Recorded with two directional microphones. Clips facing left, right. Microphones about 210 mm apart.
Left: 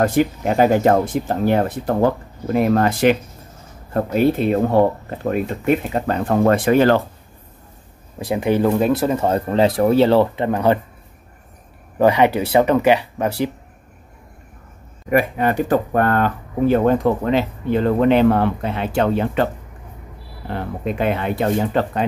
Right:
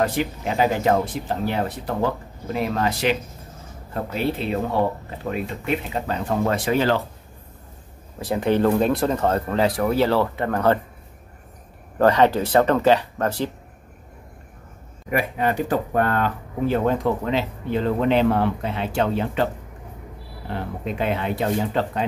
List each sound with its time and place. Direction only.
0.0 s speech: 50° left (ahead or behind)
8.2 s speech: 10° left (ahead or behind)
12.0 s speech: 10° left (ahead or behind)
15.0 s speech: 55° left (ahead or behind)
20.4 s speech: 55° left (ahead or behind)